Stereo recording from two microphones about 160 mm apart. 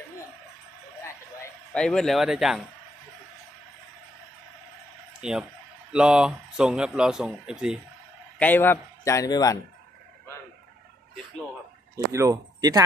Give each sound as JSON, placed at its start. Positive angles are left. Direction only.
{"t": 1.0, "sound": "a sound", "side_deg": 15}
{"t": 1.8, "sound": "speech", "side_deg": 5}
{"t": 5.2, "sound": "speech", "side_deg": -5}
{"t": 8.4, "sound": "a man's voice", "side_deg": 10}
{"t": 11.9, "sound": "speech", "side_deg": -20}